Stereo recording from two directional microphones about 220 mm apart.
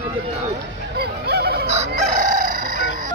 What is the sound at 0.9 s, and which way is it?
Honk, 45° right (ahead or behind).